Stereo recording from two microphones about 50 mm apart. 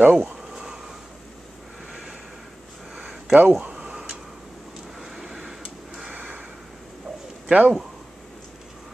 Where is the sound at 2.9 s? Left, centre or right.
Centre.